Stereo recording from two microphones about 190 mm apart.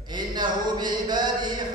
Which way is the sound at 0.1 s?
25° right (ahead or behind).